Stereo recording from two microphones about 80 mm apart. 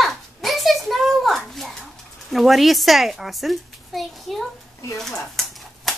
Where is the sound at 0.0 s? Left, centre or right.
Centre.